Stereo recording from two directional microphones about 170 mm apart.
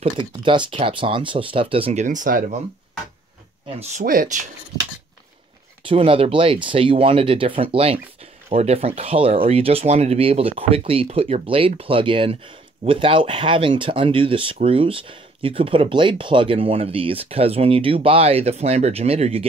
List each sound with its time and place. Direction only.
0.0 s speech: 30° right (ahead or behind)
2.0 s speech: 55° right (ahead or behind)
3.8 s speech: 50° right (ahead or behind)
5.9 s speech: 30° right (ahead or behind)